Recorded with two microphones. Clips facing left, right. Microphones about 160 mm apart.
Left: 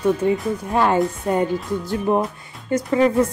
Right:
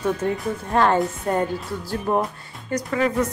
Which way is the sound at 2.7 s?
25° left (ahead or behind).